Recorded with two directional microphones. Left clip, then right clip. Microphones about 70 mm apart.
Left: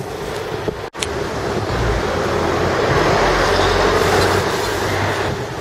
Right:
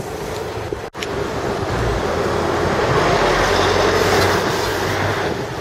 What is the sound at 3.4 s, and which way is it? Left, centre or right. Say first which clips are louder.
Vehicle: even; right.